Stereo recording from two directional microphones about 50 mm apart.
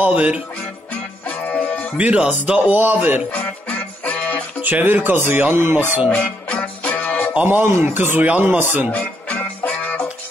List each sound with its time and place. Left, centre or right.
0.0 s speech: right
1.5 s music: centre
2.0 s speech: right
2.7 s speech: right
3.3 s music: left
4.6 s speech: right
6.0 s music: left
7.4 s speech: right
8.2 s speech: right
8.9 s music: left